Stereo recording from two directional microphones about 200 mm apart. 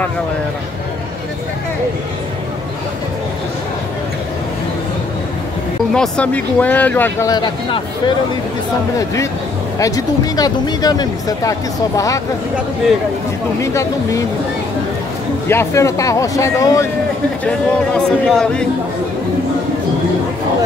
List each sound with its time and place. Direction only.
5.9 s speech: 5° left (ahead or behind)
9.8 s speech: 15° left (ahead or behind)
13.6 s speech: 15° left (ahead or behind)
15.4 s speech: 15° left (ahead or behind)
17.5 s speech: 5° left (ahead or behind)